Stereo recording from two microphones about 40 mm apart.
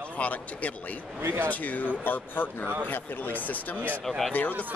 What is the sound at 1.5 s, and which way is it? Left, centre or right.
Speech, left.